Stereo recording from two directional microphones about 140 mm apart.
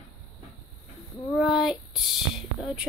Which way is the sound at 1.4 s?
5° right (ahead or behind).